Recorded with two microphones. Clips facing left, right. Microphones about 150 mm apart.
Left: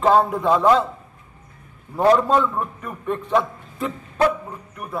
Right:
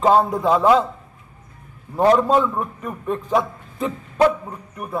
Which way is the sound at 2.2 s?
5° right (ahead or behind).